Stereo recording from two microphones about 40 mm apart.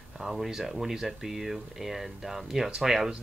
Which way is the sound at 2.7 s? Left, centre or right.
Centre.